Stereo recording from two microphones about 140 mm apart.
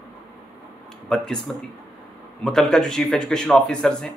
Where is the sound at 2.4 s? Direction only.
5° left (ahead or behind).